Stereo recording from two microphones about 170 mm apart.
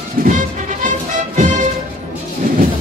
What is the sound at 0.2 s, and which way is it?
Music, 55° right (ahead or behind).